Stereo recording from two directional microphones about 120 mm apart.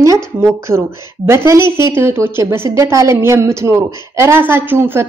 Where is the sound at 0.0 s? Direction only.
25° right (ahead or behind).